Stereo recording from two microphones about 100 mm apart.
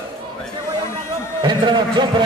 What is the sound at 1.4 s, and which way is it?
Speech, 50° right (ahead or behind).